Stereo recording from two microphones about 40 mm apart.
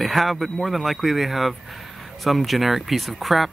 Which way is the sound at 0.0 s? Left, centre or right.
Centre.